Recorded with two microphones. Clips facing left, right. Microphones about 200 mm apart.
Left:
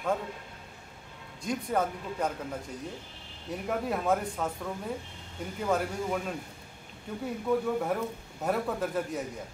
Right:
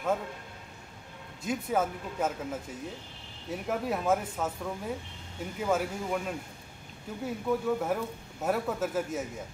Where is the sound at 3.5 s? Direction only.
Centre (ahead or behind).